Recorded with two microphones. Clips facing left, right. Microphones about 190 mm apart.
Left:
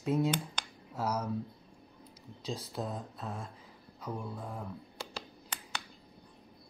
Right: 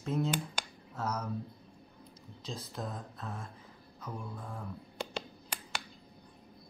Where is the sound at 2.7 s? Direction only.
10° left (ahead or behind).